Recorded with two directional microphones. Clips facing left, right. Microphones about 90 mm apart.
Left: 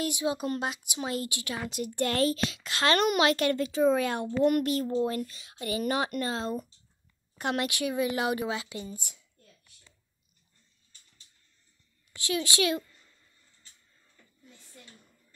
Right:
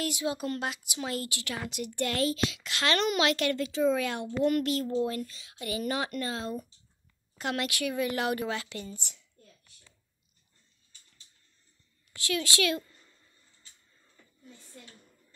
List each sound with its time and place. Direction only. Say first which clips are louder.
0.0 s a woman's voice: left 2 dB; 20° left (ahead or behind)
1.7 s a child's voice: left 3 dB; 35° left (ahead or behind)
5.8 s a woman's voice: left 3 dB; 25° left (ahead or behind)
12.2 s a woman's voice: left 1 dB; 20° left (ahead or behind)